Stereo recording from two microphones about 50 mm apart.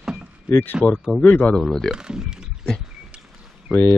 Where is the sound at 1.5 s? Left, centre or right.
Centre.